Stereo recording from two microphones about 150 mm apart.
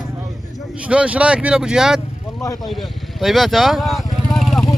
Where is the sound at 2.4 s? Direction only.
25° left (ahead or behind).